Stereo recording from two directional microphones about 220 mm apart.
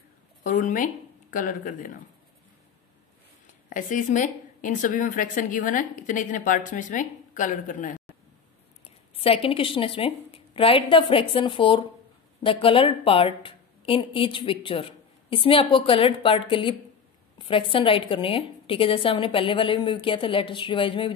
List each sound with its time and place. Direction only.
0.4 s a woman's voice: 35° left (ahead or behind)
3.6 s a woman's voice: 35° left (ahead or behind)
9.1 s a woman's voice: 25° left (ahead or behind)